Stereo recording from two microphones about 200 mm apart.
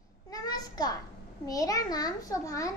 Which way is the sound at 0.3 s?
20° left (ahead or behind).